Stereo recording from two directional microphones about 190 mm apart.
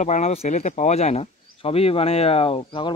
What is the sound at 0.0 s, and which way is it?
Speech, 35° left (ahead or behind).